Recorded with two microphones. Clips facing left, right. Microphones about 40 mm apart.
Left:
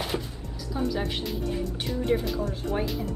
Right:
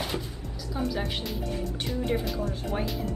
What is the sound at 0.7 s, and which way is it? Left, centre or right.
Speech, centre.